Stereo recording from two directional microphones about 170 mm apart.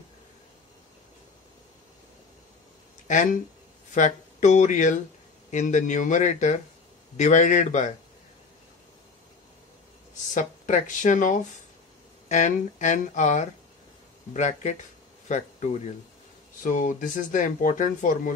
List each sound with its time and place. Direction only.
3.9 s speech: 45° left (ahead or behind)
10.3 s speech: 50° left (ahead or behind)